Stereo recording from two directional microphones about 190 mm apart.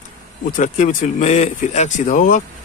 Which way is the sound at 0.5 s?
45° left (ahead or behind).